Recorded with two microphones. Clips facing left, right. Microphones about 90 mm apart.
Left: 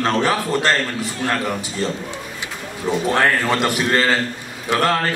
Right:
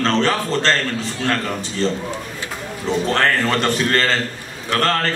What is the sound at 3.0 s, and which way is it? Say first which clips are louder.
A man's voice: left 1 dB; 15° left (ahead or behind).